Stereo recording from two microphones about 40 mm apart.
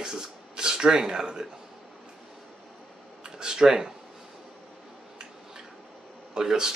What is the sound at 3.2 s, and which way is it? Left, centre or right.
Speech, centre.